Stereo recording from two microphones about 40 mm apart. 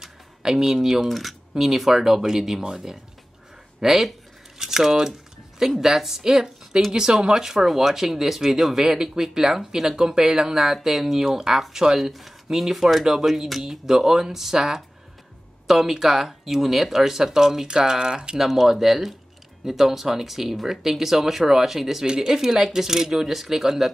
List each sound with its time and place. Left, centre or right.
0.0 s a sound: centre
1.0 s speech: centre
18.4 s speech: centre
22.0 s speech: centre